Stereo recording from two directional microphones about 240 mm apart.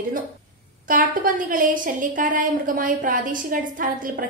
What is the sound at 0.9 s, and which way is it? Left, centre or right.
A woman's voice, right.